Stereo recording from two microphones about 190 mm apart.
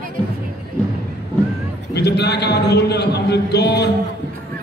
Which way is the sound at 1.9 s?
60° left (ahead or behind).